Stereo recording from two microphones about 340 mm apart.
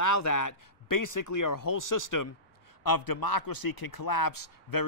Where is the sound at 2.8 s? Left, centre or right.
Left.